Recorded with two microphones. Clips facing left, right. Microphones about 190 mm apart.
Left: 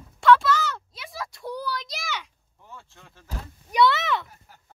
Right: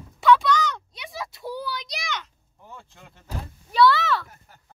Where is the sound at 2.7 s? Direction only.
15° right (ahead or behind).